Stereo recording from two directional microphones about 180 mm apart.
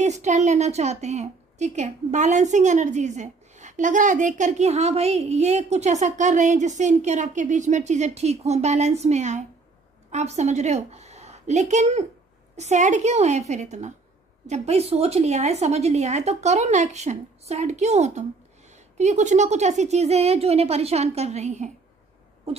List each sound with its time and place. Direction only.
0.0 s a woman's voice: 40° right (ahead or behind)